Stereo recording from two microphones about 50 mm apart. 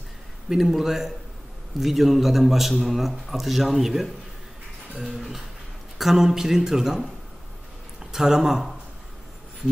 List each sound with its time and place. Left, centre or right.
0.5 s a man's voice: centre